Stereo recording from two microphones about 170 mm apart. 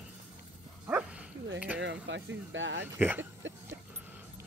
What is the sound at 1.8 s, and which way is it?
Speech, 90° right.